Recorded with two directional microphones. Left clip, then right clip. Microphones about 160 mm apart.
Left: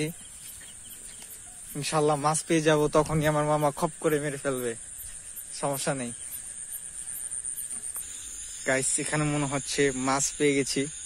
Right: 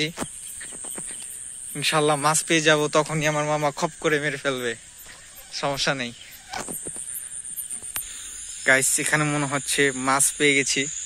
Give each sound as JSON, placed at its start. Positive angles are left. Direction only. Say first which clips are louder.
{"t": 1.7, "sound": "speech", "louder": "right 4 dB", "side_deg": -10}
{"t": 2.4, "sound": "speech", "louder": "right 3 dB", "side_deg": 5}
{"t": 8.6, "sound": "speech", "louder": "right 8 dB", "side_deg": -5}
{"t": 10.6, "sound": "speech", "louder": "right 5 dB", "side_deg": 25}